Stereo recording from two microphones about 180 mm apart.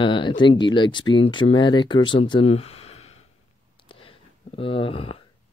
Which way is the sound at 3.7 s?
30° left (ahead or behind).